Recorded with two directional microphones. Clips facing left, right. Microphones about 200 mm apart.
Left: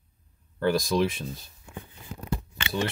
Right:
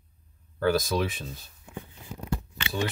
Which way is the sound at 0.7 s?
5° right (ahead or behind).